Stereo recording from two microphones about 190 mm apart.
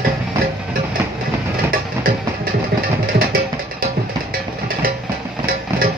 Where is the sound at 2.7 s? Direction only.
65° right (ahead or behind).